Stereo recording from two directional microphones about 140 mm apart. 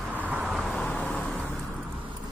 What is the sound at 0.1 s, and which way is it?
Vehicle, 10° right (ahead or behind).